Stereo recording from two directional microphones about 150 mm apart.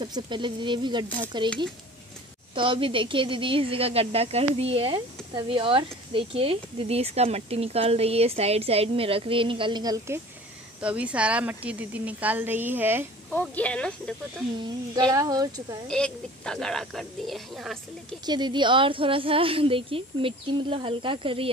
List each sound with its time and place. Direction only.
0.0 s a woman's voice: 30° right (ahead or behind)
2.5 s a woman's voice: 35° right (ahead or behind)
10.8 s a woman's voice: 10° right (ahead or behind)
13.3 s speech: 10° left (ahead or behind)
15.0 s speech: 25° right (ahead or behind)
15.9 s speech: 5° left (ahead or behind)
18.2 s a woman's voice: 30° right (ahead or behind)